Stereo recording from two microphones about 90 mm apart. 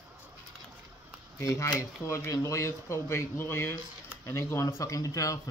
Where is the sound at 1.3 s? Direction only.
35° left (ahead or behind).